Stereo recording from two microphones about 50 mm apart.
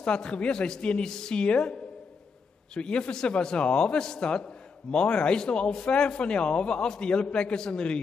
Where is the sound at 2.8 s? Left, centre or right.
Centre.